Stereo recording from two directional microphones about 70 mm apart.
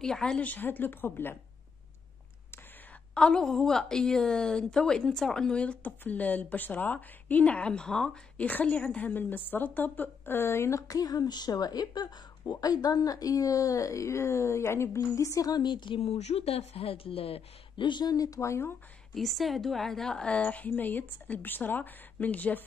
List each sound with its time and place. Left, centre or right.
0.0 s a woman's voice: centre
0.4 s a woman's voice: left
3.2 s a woman's voice: centre
8.4 s a woman's voice: left
15.0 s a woman's voice: left
15.4 s a woman's voice: left
17.9 s speech: left
18.4 s speech: left
19.1 s a woman's voice: centre; by 22.6 s left